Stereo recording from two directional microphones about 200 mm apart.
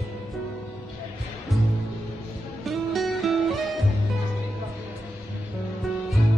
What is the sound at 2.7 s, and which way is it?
Music, centre (ahead or behind).